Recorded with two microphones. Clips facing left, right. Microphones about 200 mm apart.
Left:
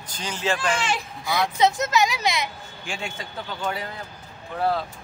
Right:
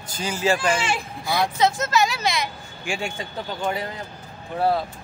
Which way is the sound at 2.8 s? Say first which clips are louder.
Right 5 dB; 10° right (ahead or behind).